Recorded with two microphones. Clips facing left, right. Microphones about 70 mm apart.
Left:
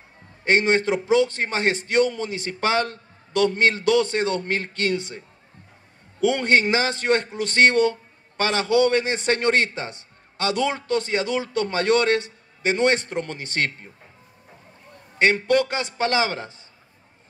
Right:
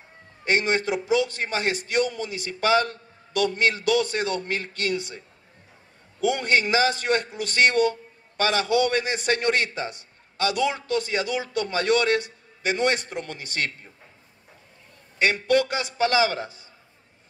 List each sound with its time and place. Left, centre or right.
0.5 s a man's voice: left
6.2 s a man's voice: left
15.1 s a man's voice: left